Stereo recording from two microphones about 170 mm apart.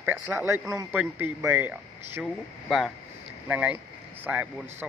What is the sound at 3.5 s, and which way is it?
A man's voice, 10° right (ahead or behind).